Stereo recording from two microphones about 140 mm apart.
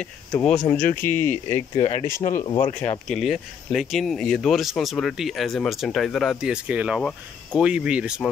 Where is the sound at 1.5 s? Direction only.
40° left (ahead or behind).